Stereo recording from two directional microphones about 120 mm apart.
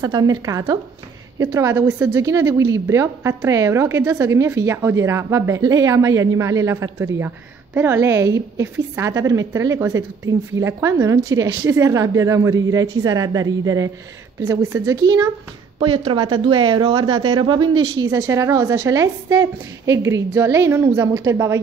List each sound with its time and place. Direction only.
0.0 s a woman's voice: 30° right (ahead or behind)
15.8 s a woman's voice: 45° right (ahead or behind); by 21.5 s 25° right (ahead or behind)